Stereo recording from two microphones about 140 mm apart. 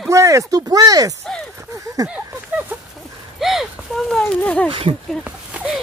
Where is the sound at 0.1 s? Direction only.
20° right (ahead or behind).